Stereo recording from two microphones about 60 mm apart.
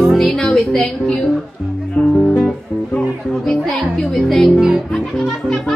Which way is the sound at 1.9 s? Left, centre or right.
Centre.